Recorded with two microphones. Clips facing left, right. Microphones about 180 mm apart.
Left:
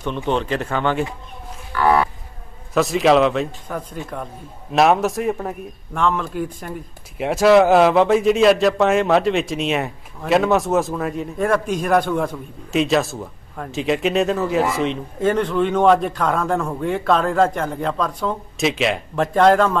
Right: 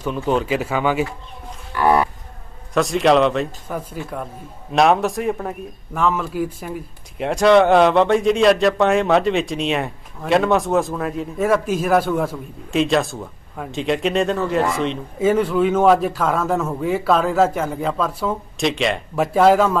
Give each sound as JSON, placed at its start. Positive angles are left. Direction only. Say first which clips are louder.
{"t": 0.0, "sound": "speech", "louder": "right 1 dB", "side_deg": -5}
{"t": 1.7, "sound": "music", "louder": "even", "side_deg": -20}
{"t": 2.7, "sound": "speech", "louder": "even", "side_deg": 0}